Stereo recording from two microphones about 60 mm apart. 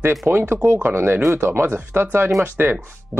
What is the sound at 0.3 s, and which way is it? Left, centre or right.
Speech, right.